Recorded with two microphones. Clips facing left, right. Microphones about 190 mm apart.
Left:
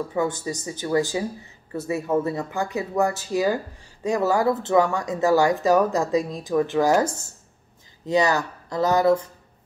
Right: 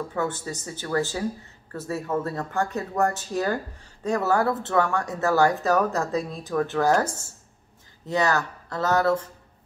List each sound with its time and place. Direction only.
0.1 s speech: 15° left (ahead or behind)
8.1 s speech: 15° left (ahead or behind)